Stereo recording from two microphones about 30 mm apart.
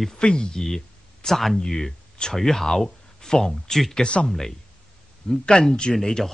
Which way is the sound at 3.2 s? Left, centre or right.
Centre.